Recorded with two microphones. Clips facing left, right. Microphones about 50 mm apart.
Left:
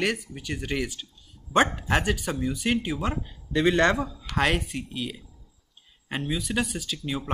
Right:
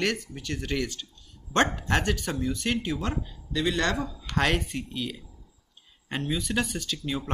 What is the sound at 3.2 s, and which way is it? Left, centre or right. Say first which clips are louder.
Speech: left 4 dB; left.